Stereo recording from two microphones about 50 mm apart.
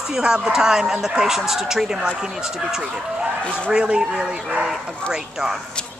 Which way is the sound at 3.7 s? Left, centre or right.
Centre.